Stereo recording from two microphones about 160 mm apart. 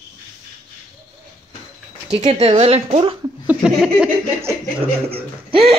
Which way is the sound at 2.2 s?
40° right (ahead or behind).